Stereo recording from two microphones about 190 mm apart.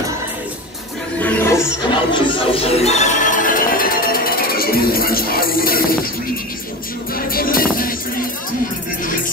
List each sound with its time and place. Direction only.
1.2 s music: 10° left (ahead or behind)
1.8 s music: 25° left (ahead or behind); by 5.9 s 50° left (ahead or behind)
7.2 s music: 50° left (ahead or behind)